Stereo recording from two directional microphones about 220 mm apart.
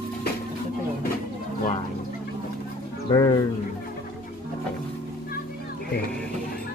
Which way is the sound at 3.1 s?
15° left (ahead or behind).